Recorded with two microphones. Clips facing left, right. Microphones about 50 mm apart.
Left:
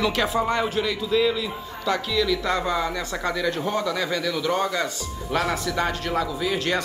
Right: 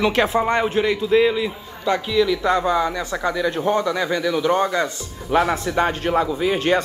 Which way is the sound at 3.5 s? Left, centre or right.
Right.